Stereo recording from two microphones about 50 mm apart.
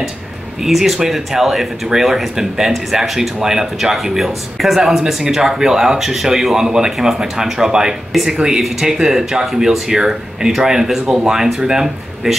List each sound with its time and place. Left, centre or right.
0.7 s speech: centre